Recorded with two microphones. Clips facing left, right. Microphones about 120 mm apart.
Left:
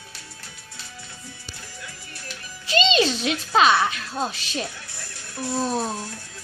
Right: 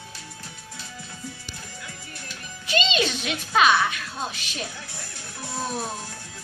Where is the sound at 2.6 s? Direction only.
30° left (ahead or behind).